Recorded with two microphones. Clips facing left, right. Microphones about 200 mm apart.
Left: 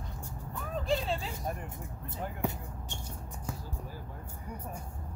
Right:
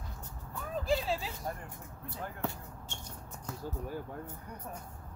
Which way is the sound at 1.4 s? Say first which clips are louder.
Left 3 dB; 20° left (ahead or behind).